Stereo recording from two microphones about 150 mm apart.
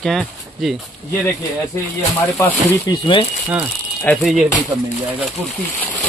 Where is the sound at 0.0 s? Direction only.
Centre (ahead or behind).